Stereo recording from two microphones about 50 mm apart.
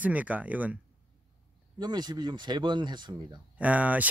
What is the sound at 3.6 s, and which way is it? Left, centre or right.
Speech, right.